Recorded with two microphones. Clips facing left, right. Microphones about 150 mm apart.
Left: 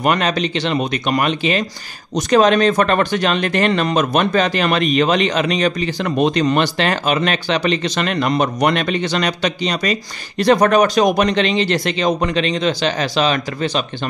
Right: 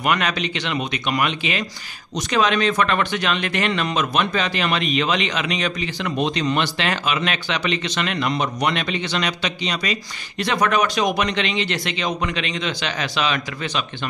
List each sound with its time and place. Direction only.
0.0 s speech: 35° left (ahead or behind)